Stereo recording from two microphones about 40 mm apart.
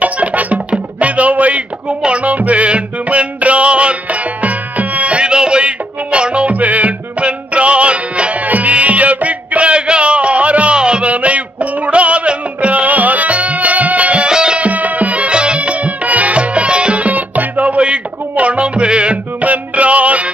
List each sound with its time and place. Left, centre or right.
0.0 s music: right
6.5 s music: right
11.1 s music: right
14.2 s music: right
14.6 s music: right